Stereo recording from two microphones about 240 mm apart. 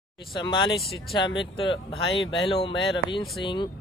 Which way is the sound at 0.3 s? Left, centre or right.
Centre.